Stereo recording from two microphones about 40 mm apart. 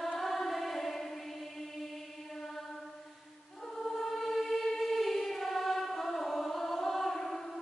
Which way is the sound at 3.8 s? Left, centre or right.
Centre.